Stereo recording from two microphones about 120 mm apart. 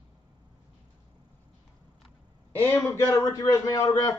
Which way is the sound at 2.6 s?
15° left (ahead or behind).